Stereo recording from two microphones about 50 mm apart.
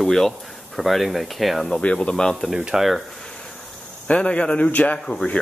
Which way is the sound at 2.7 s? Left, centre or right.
Centre.